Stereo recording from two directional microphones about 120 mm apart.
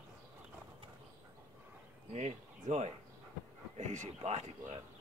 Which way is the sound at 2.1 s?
65° right (ahead or behind).